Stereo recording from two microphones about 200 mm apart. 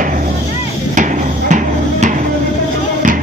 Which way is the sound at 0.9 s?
40° right (ahead or behind).